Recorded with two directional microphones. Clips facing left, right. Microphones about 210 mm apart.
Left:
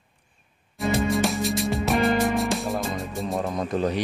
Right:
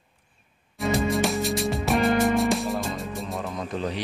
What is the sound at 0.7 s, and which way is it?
Music, centre (ahead or behind).